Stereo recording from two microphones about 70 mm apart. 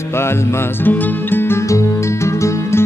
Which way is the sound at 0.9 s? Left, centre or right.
Left.